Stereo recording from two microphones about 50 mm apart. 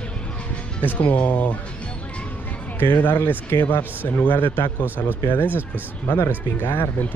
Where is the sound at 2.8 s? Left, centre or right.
Left.